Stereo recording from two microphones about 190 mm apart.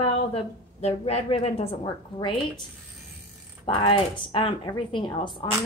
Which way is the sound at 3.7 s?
25° left (ahead or behind).